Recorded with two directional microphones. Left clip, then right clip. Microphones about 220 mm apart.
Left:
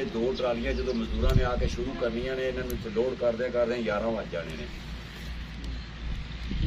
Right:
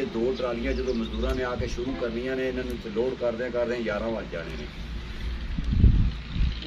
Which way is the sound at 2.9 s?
5° right (ahead or behind).